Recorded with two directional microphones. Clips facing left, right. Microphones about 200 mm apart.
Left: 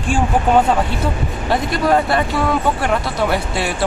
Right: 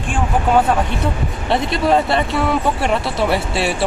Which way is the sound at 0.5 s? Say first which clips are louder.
Even; centre (ahead or behind).